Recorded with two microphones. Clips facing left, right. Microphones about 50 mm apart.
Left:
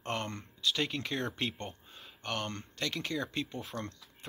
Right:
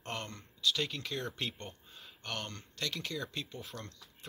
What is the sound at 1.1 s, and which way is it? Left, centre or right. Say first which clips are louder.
Speech: left 3 dB; centre.